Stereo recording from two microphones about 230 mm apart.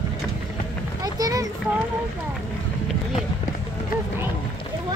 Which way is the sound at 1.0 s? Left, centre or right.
Centre.